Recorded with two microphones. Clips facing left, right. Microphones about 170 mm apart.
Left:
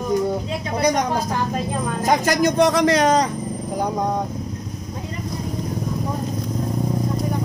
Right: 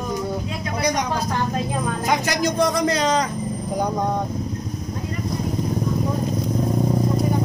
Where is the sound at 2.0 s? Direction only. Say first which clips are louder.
Left 5 dB; 45° left (ahead or behind).